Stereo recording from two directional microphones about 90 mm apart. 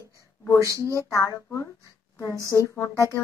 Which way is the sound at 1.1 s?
35° left (ahead or behind).